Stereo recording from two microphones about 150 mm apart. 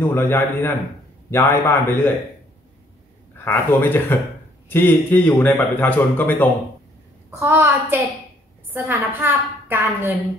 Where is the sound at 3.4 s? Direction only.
15° left (ahead or behind).